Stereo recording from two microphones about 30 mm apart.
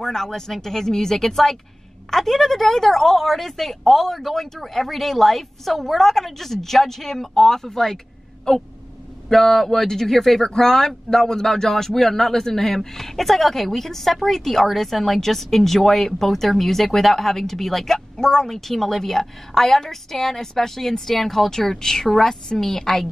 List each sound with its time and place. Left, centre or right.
0.0 s speech: centre